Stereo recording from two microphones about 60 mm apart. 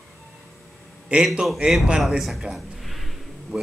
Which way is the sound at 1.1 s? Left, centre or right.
Right.